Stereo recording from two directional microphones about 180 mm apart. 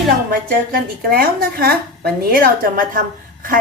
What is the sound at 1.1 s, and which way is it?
A woman's voice, 55° right (ahead or behind).